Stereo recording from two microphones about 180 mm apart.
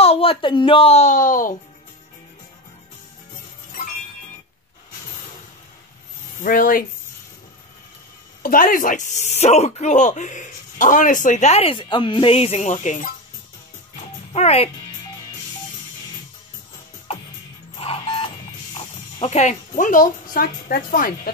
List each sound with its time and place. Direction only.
0.0 s speech: 30° left (ahead or behind); by 1.6 s 50° left (ahead or behind)
6.4 s speech: 50° left (ahead or behind)
8.4 s speech: 50° left (ahead or behind)
14.3 s speech: 35° left (ahead or behind)
17.7 s music: 30° left (ahead or behind)
19.2 s speech: 40° left (ahead or behind)